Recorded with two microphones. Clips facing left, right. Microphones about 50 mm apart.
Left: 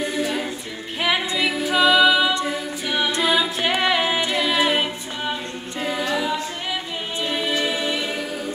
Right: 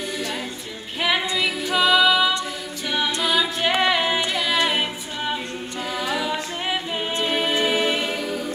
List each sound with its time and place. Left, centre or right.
1.0 s a capella: centre
3.1 s a capella: left
3.7 s music: centre
4.3 s a capella: centre
7.2 s music: centre
8.0 s music: centre